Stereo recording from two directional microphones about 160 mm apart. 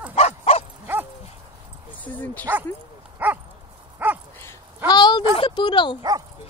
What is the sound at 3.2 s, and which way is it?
Dog, 10° right (ahead or behind).